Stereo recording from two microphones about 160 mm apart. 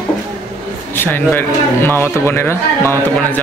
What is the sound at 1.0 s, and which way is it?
A man's voice, 10° left (ahead or behind).